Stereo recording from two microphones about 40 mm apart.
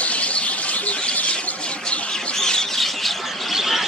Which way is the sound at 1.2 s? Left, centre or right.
Left.